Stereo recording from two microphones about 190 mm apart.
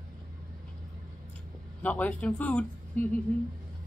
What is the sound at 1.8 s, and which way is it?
A man's voice, 5° left (ahead or behind).